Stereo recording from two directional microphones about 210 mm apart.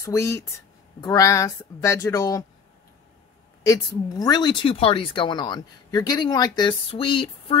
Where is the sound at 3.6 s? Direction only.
15° left (ahead or behind).